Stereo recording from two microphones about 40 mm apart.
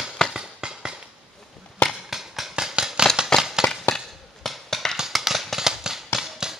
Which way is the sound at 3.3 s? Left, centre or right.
Centre.